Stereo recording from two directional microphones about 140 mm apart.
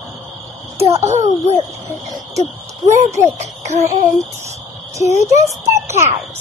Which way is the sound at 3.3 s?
55° right (ahead or behind).